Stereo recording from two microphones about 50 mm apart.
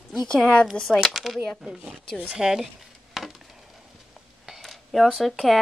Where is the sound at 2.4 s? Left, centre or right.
Centre.